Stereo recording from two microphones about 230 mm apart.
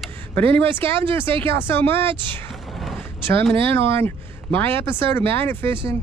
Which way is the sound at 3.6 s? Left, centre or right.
Centre.